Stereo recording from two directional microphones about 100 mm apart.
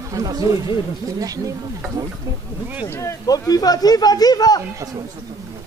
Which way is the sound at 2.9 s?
30° left (ahead or behind).